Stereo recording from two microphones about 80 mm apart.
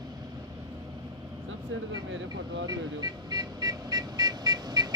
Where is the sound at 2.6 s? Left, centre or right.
Right.